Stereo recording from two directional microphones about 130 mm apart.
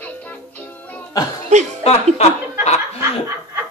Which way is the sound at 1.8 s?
55° left (ahead or behind).